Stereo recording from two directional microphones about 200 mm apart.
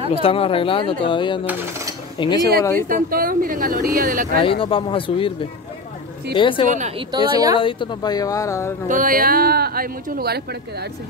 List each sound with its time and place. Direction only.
0.1 s speech: 25° left (ahead or behind)
1.4 s speech: 10° right (ahead or behind)
2.1 s speech: 20° left (ahead or behind)
2.9 s speech: 45° right (ahead or behind)
4.4 s speech: 25° left (ahead or behind)
7.0 s a woman's voice: 20° right (ahead or behind)
7.5 s speech: 25° left (ahead or behind)
8.8 s speech: 40° right (ahead or behind)